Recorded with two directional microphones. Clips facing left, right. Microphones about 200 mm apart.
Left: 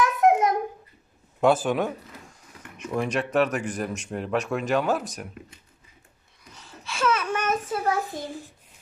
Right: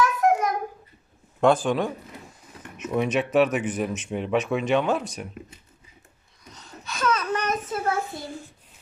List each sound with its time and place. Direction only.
0.0 s babbling: 20° left (ahead or behind)
1.4 s speech: 5° left (ahead or behind)
2.8 s speech: 5° right (ahead or behind)
6.9 s a sound: 10° left (ahead or behind)